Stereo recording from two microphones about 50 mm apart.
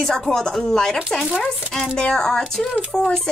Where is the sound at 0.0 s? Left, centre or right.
Centre.